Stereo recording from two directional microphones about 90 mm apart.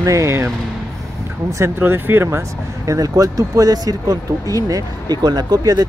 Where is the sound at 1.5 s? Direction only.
25° right (ahead or behind).